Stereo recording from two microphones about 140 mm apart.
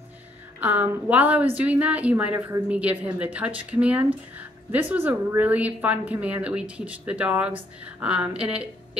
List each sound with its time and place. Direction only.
0.6 s a woman's voice: 10° right (ahead or behind)